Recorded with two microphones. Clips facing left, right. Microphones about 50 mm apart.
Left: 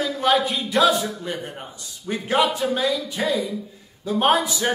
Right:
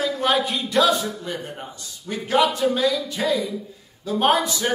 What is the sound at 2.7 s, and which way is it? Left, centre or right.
A man's voice, centre.